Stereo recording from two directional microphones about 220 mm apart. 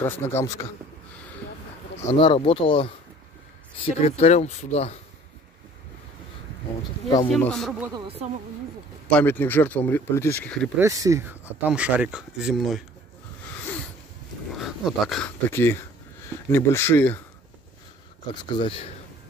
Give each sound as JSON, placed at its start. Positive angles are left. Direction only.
{"t": 0.0, "sound": "speech", "side_deg": 10}
{"t": 2.1, "sound": "speech", "side_deg": 25}
{"t": 7.2, "sound": "speech", "side_deg": 5}
{"t": 8.0, "sound": "speech", "side_deg": -25}
{"t": 9.0, "sound": "speech", "side_deg": 5}
{"t": 10.8, "sound": "speech", "side_deg": -15}
{"t": 14.6, "sound": "speech", "side_deg": 0}
{"t": 18.3, "sound": "speech", "side_deg": 20}